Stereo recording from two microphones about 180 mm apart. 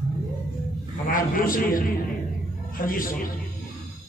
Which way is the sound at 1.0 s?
50° left (ahead or behind).